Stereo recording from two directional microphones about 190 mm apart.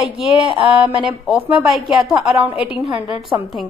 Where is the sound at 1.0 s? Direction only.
5° right (ahead or behind).